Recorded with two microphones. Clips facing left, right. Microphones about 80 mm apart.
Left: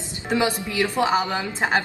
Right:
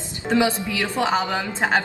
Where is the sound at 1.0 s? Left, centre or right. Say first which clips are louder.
Even; centre.